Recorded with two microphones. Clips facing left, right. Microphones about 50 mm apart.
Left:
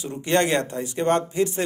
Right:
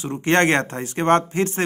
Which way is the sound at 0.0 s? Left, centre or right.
Right.